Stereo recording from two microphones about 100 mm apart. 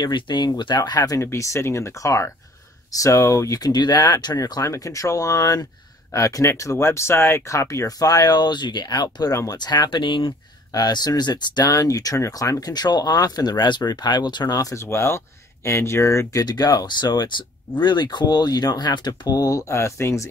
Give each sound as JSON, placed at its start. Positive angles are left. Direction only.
{"t": 0.0, "sound": "speech", "side_deg": 50}
{"t": 1.2, "sound": "speech", "side_deg": 30}